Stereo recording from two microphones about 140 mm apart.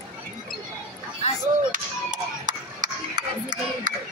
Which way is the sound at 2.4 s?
65° right (ahead or behind).